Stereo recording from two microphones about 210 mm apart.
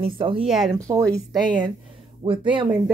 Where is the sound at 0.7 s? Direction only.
15° right (ahead or behind).